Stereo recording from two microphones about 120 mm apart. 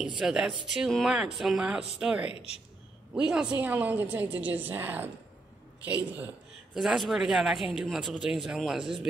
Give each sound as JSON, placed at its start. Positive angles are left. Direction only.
{"t": 0.2, "sound": "a woman's voice", "side_deg": -5}
{"t": 2.2, "sound": "speech", "side_deg": 55}
{"t": 3.2, "sound": "a woman's voice", "side_deg": -5}
{"t": 6.7, "sound": "speech", "side_deg": -5}